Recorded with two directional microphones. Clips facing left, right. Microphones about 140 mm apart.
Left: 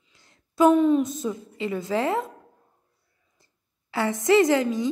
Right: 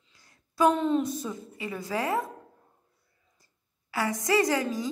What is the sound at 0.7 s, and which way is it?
Speech, 10° left (ahead or behind).